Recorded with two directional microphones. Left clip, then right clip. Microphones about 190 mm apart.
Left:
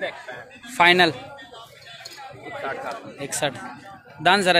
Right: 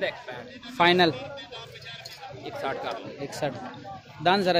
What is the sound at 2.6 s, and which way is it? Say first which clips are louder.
Speech: left 1 dB; 25° right (ahead or behind).